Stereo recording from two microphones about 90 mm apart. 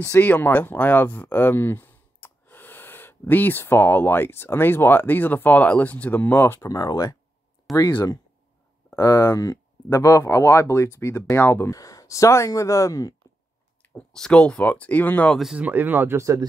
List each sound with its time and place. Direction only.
0.2 s speech: 20° left (ahead or behind)
6.7 s speech: 45° left (ahead or behind); by 11.7 s 20° left (ahead or behind)
11.7 s speech: 40° left (ahead or behind)
14.1 s speech: 10° left (ahead or behind)
15.3 s speech: 5° right (ahead or behind)
15.6 s speech: 20° right (ahead or behind)